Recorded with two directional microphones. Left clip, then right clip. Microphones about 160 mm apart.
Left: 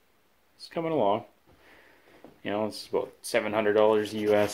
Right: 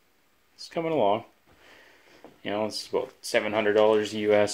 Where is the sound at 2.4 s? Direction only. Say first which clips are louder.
Right 1 dB; 5° right (ahead or behind).